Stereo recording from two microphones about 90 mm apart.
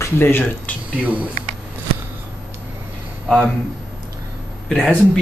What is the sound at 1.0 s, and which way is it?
Speech, 15° right (ahead or behind).